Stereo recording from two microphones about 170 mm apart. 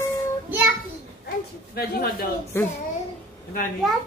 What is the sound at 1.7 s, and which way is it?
Speech, 65° left (ahead or behind).